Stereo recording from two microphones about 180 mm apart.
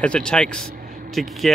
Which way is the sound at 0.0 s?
5° left (ahead or behind).